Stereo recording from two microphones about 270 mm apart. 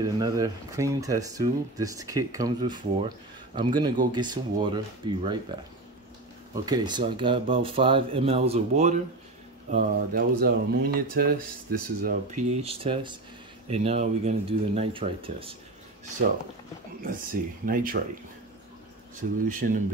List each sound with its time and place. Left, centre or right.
0.0 s speech: centre; by 12.4 s right
12.6 s speech: centre
17.0 s speech: right
19.2 s speech: right